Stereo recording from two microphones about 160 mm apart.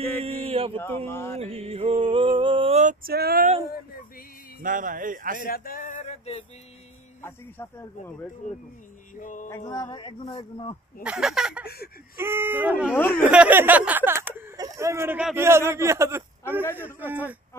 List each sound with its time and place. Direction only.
0.2 s mantra: 35° right (ahead or behind)
0.7 s speech: 15° left (ahead or behind)
1.4 s a sound: 40° right (ahead or behind)
2.8 s speech: 60° right (ahead or behind)
4.6 s speech: 55° right (ahead or behind)
5.4 s male singing: 65° left (ahead or behind); by 6.4 s 40° left (ahead or behind)
7.2 s speech: 15° left (ahead or behind)
9.1 s music: 55° left (ahead or behind)
9.7 s speech: 20° left (ahead or behind)
11.1 s speech: 5° right (ahead or behind)
11.6 s a sound: 80° left
12.2 s a man's voice: 15° right (ahead or behind)